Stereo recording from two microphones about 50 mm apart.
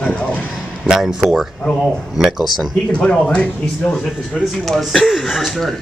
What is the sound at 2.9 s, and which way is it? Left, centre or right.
Speech, left.